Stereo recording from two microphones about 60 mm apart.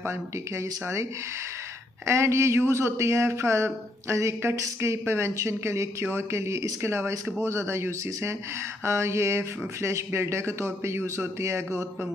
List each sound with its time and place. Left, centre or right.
0.0 s speech: right
2.0 s speech: right